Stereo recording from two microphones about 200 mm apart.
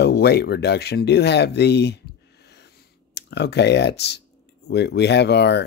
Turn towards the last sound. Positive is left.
turn(degrees=55)  # may be behind; listen again after turning